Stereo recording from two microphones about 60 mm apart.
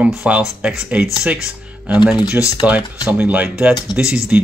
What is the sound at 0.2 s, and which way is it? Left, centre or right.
Speech, centre.